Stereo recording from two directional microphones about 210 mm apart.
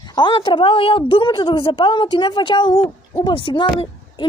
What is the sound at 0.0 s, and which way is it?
A woman's voice, 20° left (ahead or behind).